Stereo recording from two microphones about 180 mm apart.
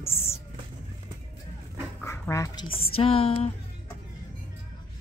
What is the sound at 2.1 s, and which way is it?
Dog, 15° left (ahead or behind).